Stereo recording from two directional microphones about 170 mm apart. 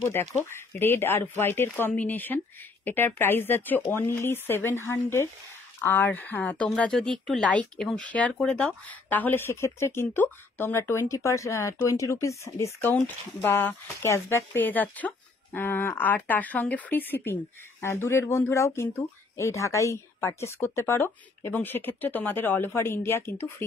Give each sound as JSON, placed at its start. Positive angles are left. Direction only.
{"t": 0.0, "sound": "speech", "side_deg": 15}